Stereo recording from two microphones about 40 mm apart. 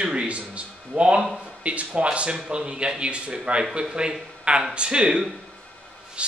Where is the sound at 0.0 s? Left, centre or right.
Right.